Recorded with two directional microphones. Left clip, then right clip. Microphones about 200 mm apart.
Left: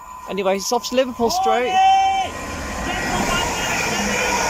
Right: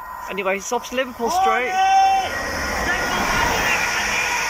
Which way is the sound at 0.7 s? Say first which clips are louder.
Left 4 dB; 15° left (ahead or behind).